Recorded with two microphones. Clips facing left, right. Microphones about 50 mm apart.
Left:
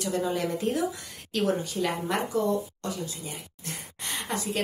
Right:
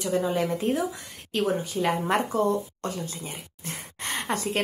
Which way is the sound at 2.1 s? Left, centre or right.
Right.